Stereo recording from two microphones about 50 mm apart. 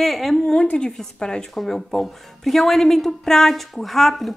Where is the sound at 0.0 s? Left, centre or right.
Centre.